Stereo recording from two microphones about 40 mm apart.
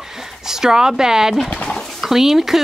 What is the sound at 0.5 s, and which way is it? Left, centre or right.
Speech, centre.